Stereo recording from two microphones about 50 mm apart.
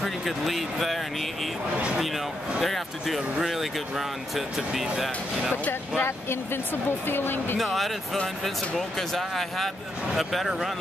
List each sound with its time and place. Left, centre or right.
0.0 s speech: centre
2.6 s speech: centre
5.7 s speech: left
7.5 s speech: centre